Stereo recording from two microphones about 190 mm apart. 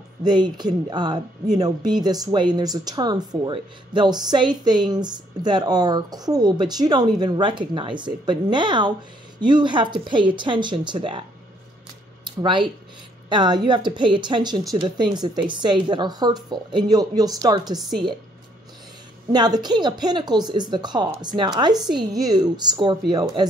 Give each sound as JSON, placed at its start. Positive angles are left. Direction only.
{"t": 0.2, "sound": "speech", "side_deg": -20}
{"t": 12.3, "sound": "speech", "side_deg": -25}
{"t": 19.3, "sound": "speech", "side_deg": -20}